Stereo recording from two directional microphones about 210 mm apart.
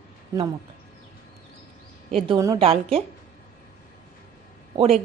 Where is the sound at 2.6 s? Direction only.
25° right (ahead or behind).